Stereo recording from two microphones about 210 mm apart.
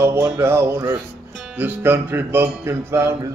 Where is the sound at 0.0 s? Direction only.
15° right (ahead or behind).